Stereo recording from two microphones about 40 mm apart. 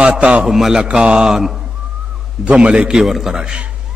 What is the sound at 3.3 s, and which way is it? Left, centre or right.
Speech, centre.